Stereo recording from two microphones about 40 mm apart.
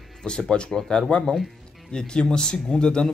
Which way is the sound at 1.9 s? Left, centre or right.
Left.